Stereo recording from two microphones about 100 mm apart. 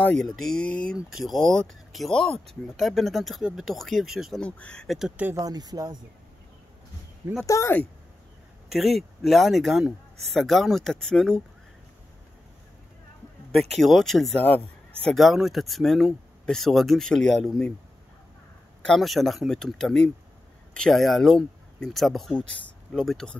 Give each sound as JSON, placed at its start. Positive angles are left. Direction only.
{"t": 0.0, "sound": "speech", "side_deg": 5}
{"t": 0.9, "sound": "speech", "side_deg": 0}
{"t": 4.4, "sound": "speech", "side_deg": 10}
{"t": 4.8, "sound": "speech", "side_deg": -5}
{"t": 5.3, "sound": "speech", "side_deg": -40}
{"t": 7.4, "sound": "speech", "side_deg": 30}
{"t": 8.6, "sound": "speech", "side_deg": 0}
{"t": 13.6, "sound": "speech", "side_deg": 0}
{"t": 18.9, "sound": "speech", "side_deg": 0}